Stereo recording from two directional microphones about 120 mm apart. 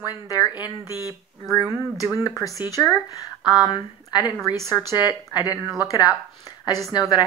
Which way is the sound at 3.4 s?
35° left (ahead or behind).